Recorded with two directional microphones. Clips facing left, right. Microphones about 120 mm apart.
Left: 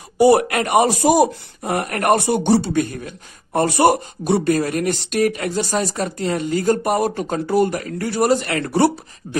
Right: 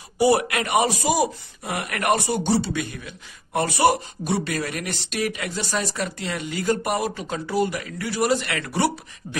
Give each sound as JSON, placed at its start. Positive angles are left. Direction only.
{"t": 0.2, "sound": "speech", "side_deg": 50}